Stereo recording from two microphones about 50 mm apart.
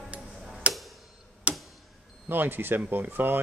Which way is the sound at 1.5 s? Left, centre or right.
Right.